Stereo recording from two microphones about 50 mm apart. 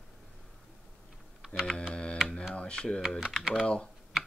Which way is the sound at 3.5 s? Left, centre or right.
Centre.